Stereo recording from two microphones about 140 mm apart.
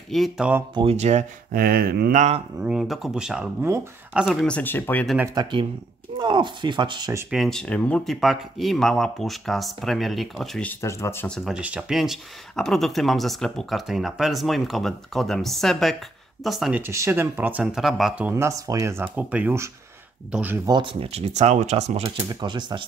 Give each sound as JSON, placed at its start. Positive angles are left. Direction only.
{"t": 0.1, "sound": "speech", "side_deg": 0}
{"t": 0.7, "sound": "speech", "side_deg": -50}
{"t": 1.5, "sound": "mantra", "side_deg": -90}
{"t": 2.6, "sound": "speech", "side_deg": -5}
{"t": 4.3, "sound": "speech", "side_deg": 5}
{"t": 5.2, "sound": "speech", "side_deg": -30}
{"t": 7.2, "sound": "speech", "side_deg": 0}
{"t": 10.7, "sound": "speech", "side_deg": 20}
{"t": 11.2, "sound": "speech", "side_deg": 0}
{"t": 16.7, "sound": "speech", "side_deg": -20}
{"t": 18.3, "sound": "speech", "side_deg": -20}
{"t": 20.6, "sound": "speech", "side_deg": -35}
{"t": 22.3, "sound": "speech", "side_deg": -30}